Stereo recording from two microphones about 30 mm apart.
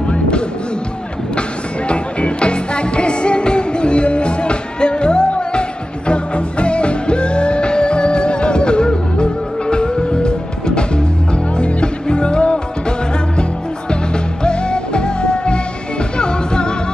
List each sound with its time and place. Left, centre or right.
1.9 s music: left
14.4 s music: left